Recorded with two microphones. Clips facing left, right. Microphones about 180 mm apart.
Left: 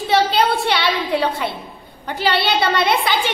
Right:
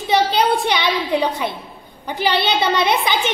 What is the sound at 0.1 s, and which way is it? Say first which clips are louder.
A woman's voice: even; 15° right (ahead or behind).